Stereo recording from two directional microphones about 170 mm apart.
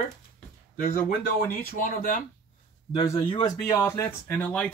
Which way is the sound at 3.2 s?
25° left (ahead or behind).